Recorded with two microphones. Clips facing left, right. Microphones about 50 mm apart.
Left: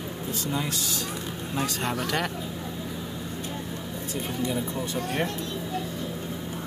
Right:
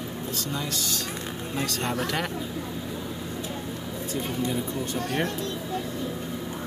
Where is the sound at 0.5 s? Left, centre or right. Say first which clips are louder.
Left 1 dB; centre.